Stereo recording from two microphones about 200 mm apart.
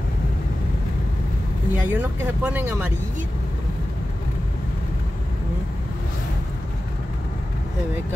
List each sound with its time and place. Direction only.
1.7 s speech: 10° right (ahead or behind)